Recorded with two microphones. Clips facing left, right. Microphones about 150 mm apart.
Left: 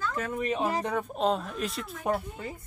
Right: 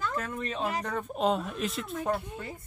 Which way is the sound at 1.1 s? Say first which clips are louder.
Right 2 dB; centre (ahead or behind).